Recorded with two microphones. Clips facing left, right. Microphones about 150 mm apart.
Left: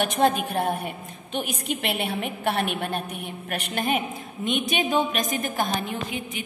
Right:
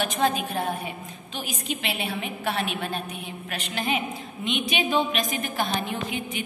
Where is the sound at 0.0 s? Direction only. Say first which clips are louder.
Left 3 dB; 55° left (ahead or behind).